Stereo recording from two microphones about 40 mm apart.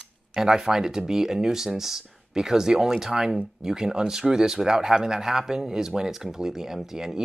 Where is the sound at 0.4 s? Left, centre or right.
Centre.